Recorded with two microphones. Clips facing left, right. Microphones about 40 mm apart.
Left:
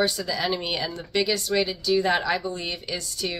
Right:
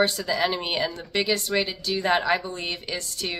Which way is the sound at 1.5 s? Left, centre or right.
Right.